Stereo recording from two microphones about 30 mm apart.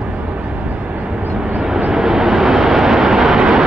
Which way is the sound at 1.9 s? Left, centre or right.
Centre.